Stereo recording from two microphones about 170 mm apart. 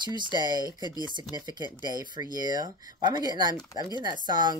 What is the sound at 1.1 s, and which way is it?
Speech, 25° right (ahead or behind).